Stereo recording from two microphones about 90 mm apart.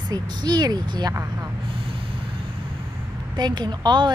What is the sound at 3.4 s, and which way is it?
Speech, 55° right (ahead or behind).